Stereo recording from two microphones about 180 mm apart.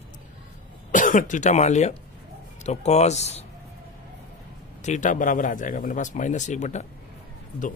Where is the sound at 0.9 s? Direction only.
45° left (ahead or behind).